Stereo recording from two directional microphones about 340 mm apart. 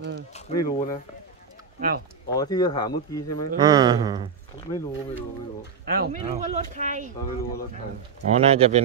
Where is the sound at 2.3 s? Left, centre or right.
Centre.